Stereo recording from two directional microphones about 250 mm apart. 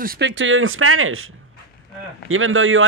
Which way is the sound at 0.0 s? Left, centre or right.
Right.